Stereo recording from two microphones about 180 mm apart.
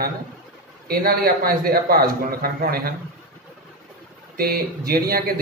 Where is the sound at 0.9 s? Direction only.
55° right (ahead or behind).